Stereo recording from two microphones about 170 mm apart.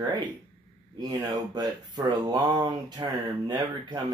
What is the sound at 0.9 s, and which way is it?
Speech, 25° right (ahead or behind).